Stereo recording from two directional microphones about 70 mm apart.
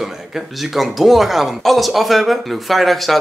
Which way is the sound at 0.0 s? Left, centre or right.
Centre.